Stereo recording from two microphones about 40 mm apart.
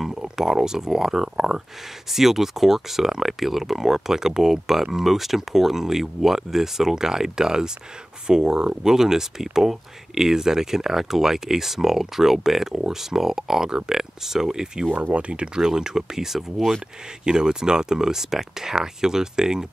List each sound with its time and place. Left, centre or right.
0.4 s speech: centre
15.1 s speech: right; by 16.7 s centre
17.2 s speech: centre